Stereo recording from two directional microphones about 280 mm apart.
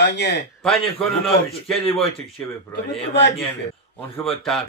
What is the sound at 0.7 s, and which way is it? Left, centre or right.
A man's voice, centre.